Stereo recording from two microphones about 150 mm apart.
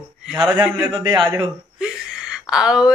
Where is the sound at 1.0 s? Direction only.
30° right (ahead or behind).